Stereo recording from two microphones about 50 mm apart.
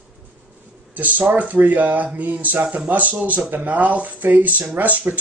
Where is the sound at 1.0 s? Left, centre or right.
Right.